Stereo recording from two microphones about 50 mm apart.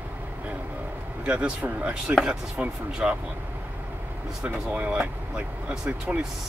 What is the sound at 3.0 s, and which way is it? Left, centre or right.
Speech, centre.